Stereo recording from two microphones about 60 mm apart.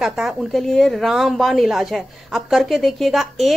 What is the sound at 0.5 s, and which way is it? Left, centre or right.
Speech, centre.